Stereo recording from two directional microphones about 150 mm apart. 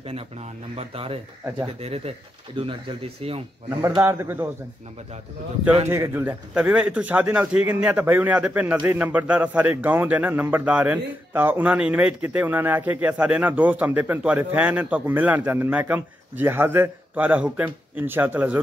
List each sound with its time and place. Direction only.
0.7 s speech: 40° right (ahead or behind)
3.8 s a man's voice: 20° right (ahead or behind)
5.9 s a man's voice: 15° right (ahead or behind)